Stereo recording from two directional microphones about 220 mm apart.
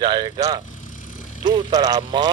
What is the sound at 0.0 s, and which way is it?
A man's voice, 20° right (ahead or behind).